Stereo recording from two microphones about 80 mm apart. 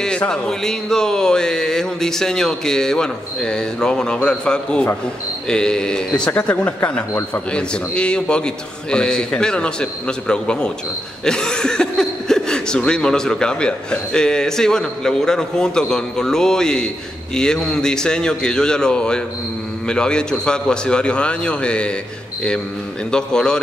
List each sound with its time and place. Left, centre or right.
0.3 s speech: centre
6.3 s speech: left
23.1 s speech: centre